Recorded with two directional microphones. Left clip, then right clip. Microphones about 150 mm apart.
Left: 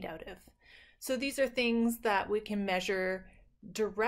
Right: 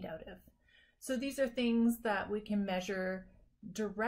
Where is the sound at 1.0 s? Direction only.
15° left (ahead or behind).